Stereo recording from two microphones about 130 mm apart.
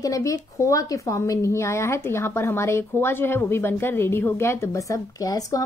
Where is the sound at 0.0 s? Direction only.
25° left (ahead or behind).